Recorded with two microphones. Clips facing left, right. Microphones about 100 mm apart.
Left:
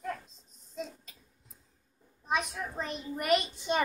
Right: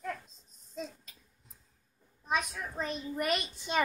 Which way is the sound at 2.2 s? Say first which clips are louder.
Left 1 dB; 20° left (ahead or behind).